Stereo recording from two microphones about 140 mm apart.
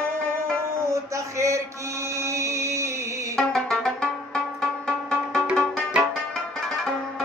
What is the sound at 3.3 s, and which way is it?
Music, 5° left (ahead or behind).